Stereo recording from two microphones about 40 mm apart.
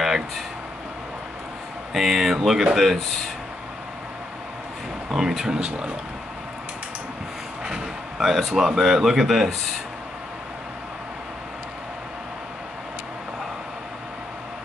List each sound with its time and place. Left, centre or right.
2.0 s speech: centre
5.1 s speech: centre
7.6 s a sound: centre
8.5 s speech: centre